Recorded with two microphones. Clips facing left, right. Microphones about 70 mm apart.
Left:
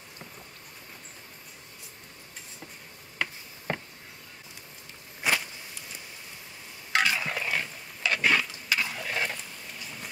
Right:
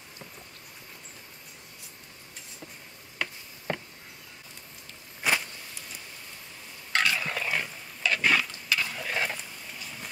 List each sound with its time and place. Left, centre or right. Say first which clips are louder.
3.2 s a sound: left 2 dB; left
5.2 s a sound: even; centre
6.9 s fowl: left 1 dB; centre
8.1 s pig: even; centre
8.6 s stir: even; centre
8.9 s stir: right 1 dB; centre